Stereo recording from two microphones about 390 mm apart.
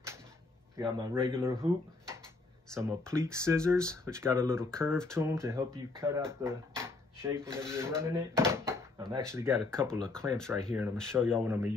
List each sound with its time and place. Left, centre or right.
0.7 s speech: centre
2.7 s speech: centre